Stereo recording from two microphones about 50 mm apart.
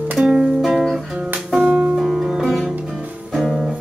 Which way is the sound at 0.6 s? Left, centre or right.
Centre.